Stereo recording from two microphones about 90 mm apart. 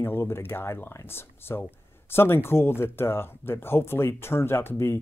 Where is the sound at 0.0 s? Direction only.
25° left (ahead or behind).